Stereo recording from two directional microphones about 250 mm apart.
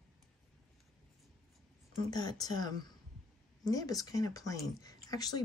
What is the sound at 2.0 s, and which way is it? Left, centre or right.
Speech, centre.